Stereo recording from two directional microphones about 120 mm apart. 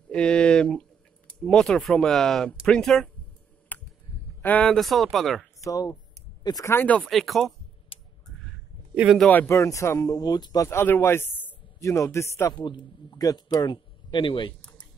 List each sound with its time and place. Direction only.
0.1 s speech: 10° left (ahead or behind)
3.7 s a sound: 15° left (ahead or behind)
4.4 s speech: 10° left (ahead or behind)
5.6 s speech: 30° left (ahead or behind)
6.7 s speech: 15° left (ahead or behind)
7.1 s speech: centre (ahead or behind)
7.9 s a sound: 50° left (ahead or behind)
8.9 s a man's voice: 10° right (ahead or behind)
9.2 s speech: 15° left (ahead or behind)
9.5 s speech: 25° left (ahead or behind)
12.6 s a man's voice: 35° left (ahead or behind)
14.6 s a sound: 10° left (ahead or behind)